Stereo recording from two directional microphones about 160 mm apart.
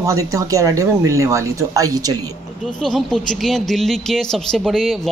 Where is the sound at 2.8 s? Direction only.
Centre (ahead or behind).